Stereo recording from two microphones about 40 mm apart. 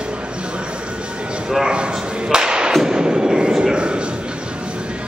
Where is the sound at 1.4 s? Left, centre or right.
Centre.